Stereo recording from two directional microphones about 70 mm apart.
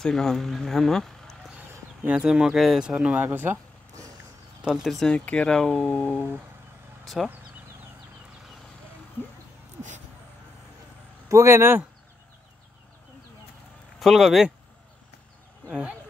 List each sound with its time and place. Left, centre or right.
0.0 s speech: centre
2.1 s speech: centre
3.3 s speech: right
4.8 s speech: centre
5.1 s speech: centre
7.2 s speech: centre
11.2 s speech: right
13.9 s speech: centre
15.6 s speech: left